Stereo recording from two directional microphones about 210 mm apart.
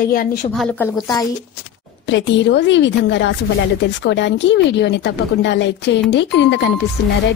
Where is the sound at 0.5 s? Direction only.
5° left (ahead or behind).